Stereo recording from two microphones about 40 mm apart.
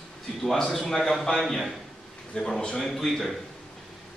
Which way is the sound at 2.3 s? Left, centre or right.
Centre.